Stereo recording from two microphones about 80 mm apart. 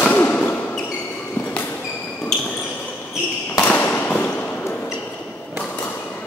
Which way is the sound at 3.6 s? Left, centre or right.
Centre.